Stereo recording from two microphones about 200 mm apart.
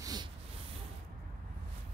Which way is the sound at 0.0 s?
20° right (ahead or behind).